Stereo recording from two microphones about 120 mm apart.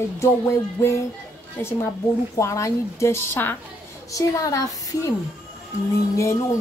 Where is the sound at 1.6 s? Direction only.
20° left (ahead or behind).